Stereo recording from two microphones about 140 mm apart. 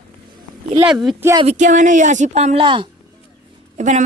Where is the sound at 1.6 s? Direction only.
65° right (ahead or behind).